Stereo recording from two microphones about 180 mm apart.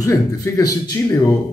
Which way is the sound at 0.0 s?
20° left (ahead or behind).